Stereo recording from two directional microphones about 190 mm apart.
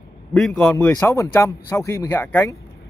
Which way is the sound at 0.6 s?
15° left (ahead or behind).